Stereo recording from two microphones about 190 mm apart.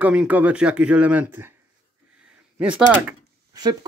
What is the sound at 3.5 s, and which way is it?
Speech, 20° right (ahead or behind).